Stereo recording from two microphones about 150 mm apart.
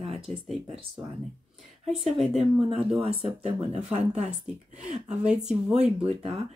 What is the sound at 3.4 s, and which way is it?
Speech, 45° right (ahead or behind).